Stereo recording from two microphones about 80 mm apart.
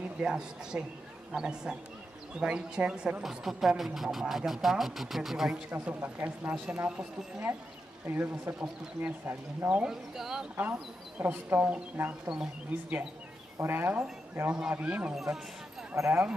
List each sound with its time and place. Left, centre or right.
0.2 s speech: centre
5.7 s speech: centre
8.1 s speech: right
9.8 s speech: centre
10.5 s speech: right
13.6 s speech: right
14.5 s speech: centre
16.0 s speech: right